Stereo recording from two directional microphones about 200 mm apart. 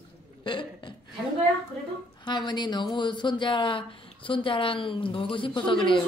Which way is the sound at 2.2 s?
20° left (ahead or behind).